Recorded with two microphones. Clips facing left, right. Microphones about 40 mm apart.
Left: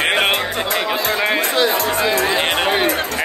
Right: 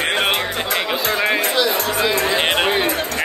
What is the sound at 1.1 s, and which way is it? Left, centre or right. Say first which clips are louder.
Speech: right 1 dB; centre.